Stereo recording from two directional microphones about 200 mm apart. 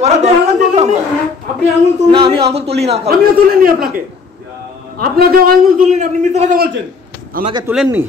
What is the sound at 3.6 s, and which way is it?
Speech, 45° right (ahead or behind).